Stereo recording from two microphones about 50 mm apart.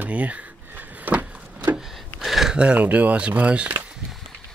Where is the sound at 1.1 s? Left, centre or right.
Right.